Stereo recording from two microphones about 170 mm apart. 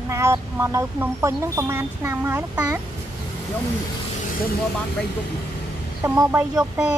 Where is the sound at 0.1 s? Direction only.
15° right (ahead or behind).